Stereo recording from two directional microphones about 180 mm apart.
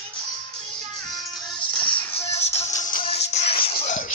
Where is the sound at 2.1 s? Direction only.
35° left (ahead or behind).